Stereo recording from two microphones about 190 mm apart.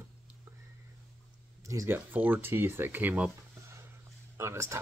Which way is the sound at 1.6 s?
15° right (ahead or behind).